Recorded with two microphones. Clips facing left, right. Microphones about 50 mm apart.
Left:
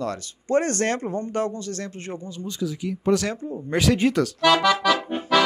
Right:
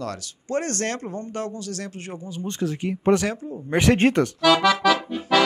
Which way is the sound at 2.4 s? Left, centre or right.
Right.